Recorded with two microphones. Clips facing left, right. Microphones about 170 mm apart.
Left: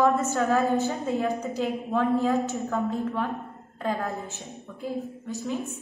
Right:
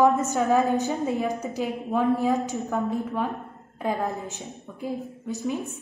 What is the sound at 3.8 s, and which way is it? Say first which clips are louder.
A woman's voice: right 2 dB; 15° right (ahead or behind).